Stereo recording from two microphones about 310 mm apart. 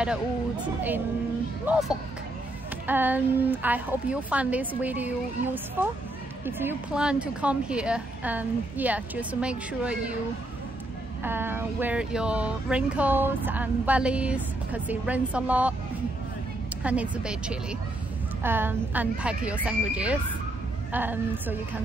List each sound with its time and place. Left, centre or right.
1.7 s speech: centre
11.2 s speech: centre
16.8 s speech: centre